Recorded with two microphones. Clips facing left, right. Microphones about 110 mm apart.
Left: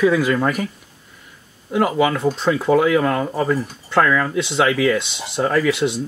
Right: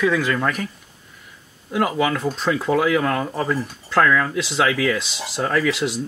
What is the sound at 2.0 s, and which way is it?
Speech, 20° left (ahead or behind).